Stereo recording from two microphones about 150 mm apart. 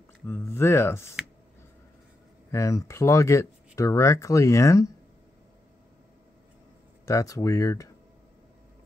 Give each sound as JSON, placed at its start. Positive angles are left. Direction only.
{"t": 0.3, "sound": "speech", "side_deg": 15}
{"t": 2.5, "sound": "speech", "side_deg": 20}
{"t": 7.1, "sound": "speech", "side_deg": 20}